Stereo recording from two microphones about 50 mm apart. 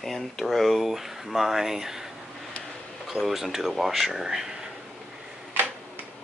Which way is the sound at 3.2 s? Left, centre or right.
Centre.